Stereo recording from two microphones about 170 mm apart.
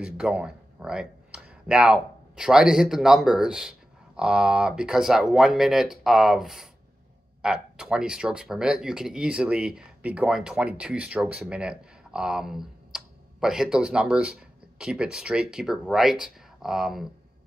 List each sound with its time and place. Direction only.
0.0 s speech: 5° right (ahead or behind)